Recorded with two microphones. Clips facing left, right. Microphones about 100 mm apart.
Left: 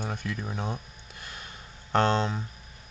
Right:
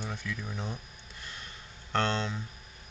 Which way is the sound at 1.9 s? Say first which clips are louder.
Left 6 dB; 50° left (ahead or behind).